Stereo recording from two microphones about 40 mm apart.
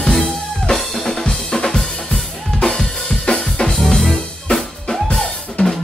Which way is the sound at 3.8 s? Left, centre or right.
Centre.